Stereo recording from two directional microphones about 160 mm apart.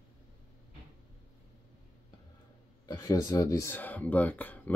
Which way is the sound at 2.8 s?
20° left (ahead or behind).